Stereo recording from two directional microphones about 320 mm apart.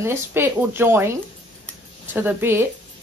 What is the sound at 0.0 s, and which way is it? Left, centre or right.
Speech, centre.